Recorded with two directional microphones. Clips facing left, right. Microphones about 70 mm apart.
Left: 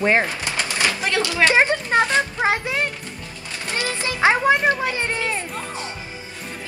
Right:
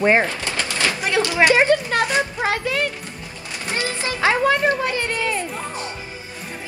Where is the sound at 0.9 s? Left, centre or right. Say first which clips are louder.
Right 3 dB; right.